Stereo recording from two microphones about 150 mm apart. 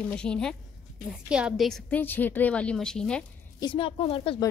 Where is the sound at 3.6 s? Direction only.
35° left (ahead or behind).